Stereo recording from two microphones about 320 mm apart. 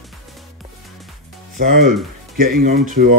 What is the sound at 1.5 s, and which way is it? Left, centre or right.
Speech, right.